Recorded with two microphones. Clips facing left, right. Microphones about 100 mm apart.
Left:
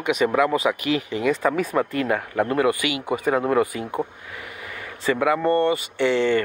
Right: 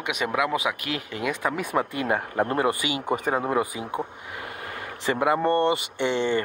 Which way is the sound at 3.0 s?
45° right (ahead or behind).